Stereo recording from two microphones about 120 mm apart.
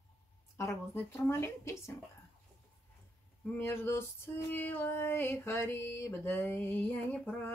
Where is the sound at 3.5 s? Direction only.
20° left (ahead or behind).